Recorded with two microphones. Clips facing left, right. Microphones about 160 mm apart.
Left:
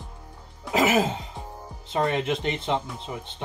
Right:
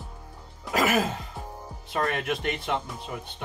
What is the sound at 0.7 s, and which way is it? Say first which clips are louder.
Music: left 3 dB; 20° left (ahead or behind).